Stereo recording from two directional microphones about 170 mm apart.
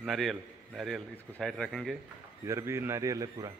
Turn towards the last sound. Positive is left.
turn(degrees=-20)  # may be behind; listen again after turning